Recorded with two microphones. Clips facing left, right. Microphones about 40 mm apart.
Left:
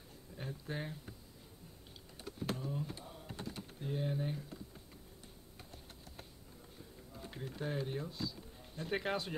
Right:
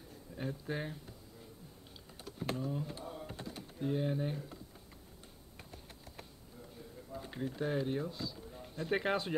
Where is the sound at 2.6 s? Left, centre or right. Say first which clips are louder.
Right 3 dB; centre.